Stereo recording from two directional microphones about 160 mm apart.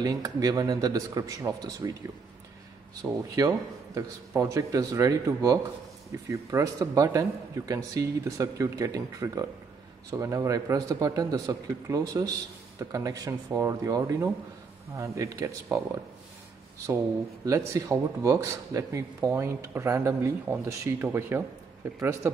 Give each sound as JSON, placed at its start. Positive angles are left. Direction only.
{"t": 0.0, "sound": "speech", "side_deg": -25}
{"t": 3.0, "sound": "speech", "side_deg": -20}
{"t": 17.5, "sound": "speech", "side_deg": -20}